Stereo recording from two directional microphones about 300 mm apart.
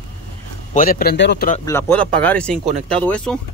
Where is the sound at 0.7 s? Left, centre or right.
Left.